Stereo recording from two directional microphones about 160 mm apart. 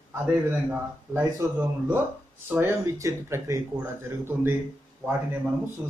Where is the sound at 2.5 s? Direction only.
15° right (ahead or behind).